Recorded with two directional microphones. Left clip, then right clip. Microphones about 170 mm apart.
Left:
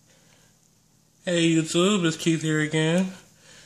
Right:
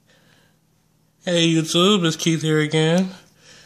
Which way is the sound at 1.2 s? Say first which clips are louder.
Right 3 dB; 45° right (ahead or behind).